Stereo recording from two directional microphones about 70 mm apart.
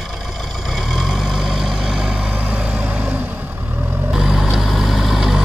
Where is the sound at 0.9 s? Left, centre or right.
Centre.